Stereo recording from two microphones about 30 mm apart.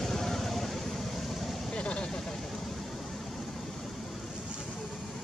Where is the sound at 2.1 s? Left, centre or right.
Centre.